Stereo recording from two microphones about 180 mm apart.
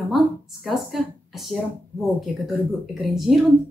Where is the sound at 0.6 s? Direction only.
Centre (ahead or behind).